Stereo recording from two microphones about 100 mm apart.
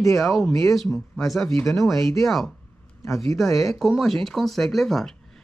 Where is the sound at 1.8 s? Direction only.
Centre (ahead or behind).